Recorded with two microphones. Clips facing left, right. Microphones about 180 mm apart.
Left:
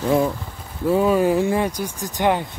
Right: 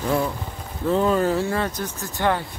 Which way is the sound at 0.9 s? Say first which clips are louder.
Left 3 dB; 10° left (ahead or behind).